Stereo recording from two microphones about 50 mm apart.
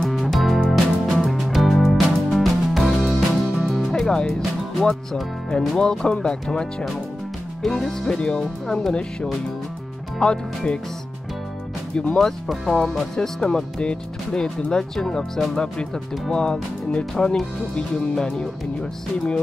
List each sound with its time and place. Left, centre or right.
0.1 s music: centre
4.0 s music: centre
5.8 s speech: centre
7.6 s speech: centre
8.2 s speech: centre
8.6 s speech: centre
10.2 s speech: centre
11.9 s speech: centre
12.2 s speech: centre